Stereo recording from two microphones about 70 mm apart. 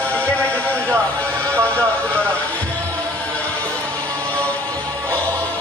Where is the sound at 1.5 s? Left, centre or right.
Right.